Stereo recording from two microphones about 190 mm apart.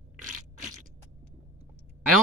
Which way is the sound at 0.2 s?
40° right (ahead or behind).